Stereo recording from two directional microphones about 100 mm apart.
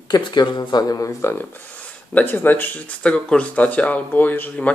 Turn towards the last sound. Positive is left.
turn(degrees=15)  # may be behind; listen again after turning